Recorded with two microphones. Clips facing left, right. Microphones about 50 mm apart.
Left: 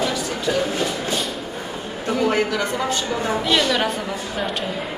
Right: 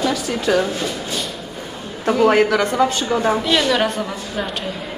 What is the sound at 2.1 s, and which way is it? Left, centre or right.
Speech, right.